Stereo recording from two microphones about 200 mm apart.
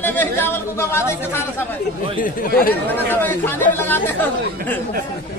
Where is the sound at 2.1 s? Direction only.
45° left (ahead or behind).